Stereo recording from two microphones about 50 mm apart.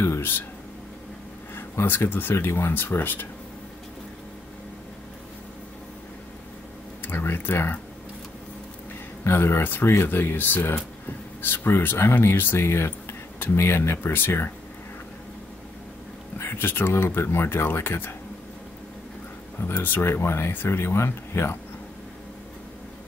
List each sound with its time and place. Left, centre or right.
0.2 s speech: left
1.5 s speech: left
2.3 s speech: left
7.0 s speech: left
9.2 s speech: left
16.3 s speech: left
19.8 s speech: left